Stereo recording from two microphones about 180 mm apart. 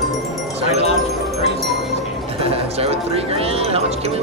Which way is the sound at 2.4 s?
35° right (ahead or behind).